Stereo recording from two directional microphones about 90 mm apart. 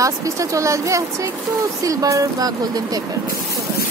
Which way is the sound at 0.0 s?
35° right (ahead or behind).